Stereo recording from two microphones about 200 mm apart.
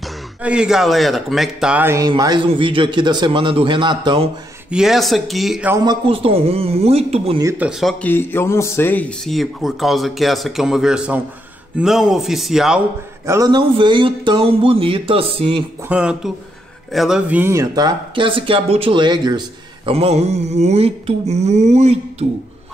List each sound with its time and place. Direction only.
0.4 s speech: 5° right (ahead or behind)
2.0 s speech: 20° right (ahead or behind)
4.6 s speech: 5° right (ahead or behind)
5.9 s speech: 30° right (ahead or behind)
7.3 s speech: 10° right (ahead or behind)
8.0 s speech: 10° left (ahead or behind)
13.3 s speech: 20° right (ahead or behind)
15.9 s speech: 5° right (ahead or behind); by 21.9 s 35° right (ahead or behind)